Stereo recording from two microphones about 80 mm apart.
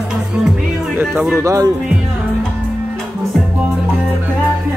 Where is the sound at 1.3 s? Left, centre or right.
Right.